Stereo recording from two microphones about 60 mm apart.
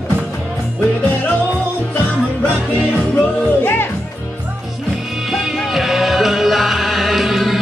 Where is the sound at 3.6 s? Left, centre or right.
Left.